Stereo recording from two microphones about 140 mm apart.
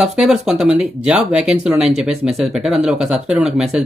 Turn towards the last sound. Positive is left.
turn(degrees=-5)  # may be behind; listen again after turning